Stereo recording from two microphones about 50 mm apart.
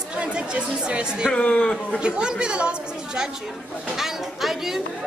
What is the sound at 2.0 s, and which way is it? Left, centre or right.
A woman's voice, centre.